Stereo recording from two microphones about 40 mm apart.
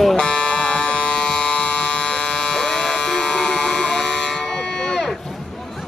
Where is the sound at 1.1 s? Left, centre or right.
Centre.